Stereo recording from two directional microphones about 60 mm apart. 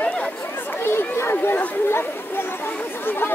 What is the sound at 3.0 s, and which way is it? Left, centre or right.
Speech, left.